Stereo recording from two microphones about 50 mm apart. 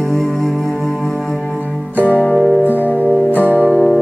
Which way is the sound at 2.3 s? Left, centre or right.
Centre.